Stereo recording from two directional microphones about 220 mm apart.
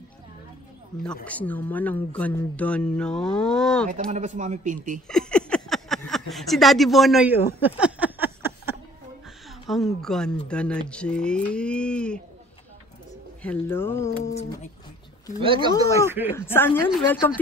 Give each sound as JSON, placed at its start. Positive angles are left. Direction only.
{"t": 1.2, "sound": "speech", "side_deg": 5}
{"t": 3.9, "sound": "a man's voice", "side_deg": -35}
{"t": 5.0, "sound": "a sound", "side_deg": 5}
{"t": 9.7, "sound": "speech", "side_deg": 0}
{"t": 13.4, "sound": "speech", "side_deg": 10}
{"t": 15.4, "sound": "speech", "side_deg": -25}
{"t": 16.1, "sound": "speech", "side_deg": -10}
{"t": 16.3, "sound": "speech", "side_deg": 10}